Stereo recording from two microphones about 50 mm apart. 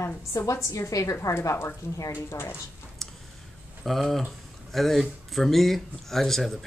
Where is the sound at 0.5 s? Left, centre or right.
Left.